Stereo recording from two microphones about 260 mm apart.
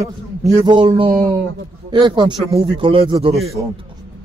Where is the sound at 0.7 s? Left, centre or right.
Centre.